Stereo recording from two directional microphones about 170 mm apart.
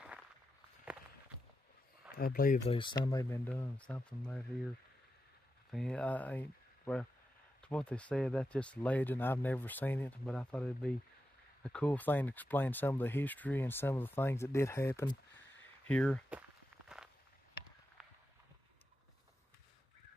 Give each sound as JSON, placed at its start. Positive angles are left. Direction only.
{"t": 2.1, "sound": "speech", "side_deg": 60}
{"t": 2.7, "sound": "speech", "side_deg": 30}
{"t": 5.7, "sound": "speech", "side_deg": 5}